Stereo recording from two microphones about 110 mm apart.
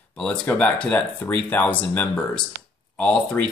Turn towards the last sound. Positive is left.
turn(degrees=10)  # may be behind; listen again after turning